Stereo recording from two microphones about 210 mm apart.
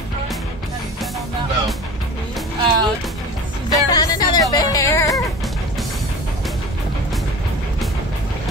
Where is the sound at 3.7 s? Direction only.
20° left (ahead or behind).